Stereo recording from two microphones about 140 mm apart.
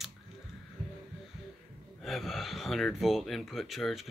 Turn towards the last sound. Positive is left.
turn(degrees=0)  # may be behind; listen again after turning